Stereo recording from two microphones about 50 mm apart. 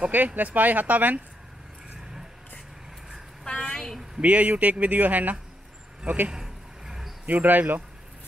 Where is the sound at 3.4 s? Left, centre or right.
Left.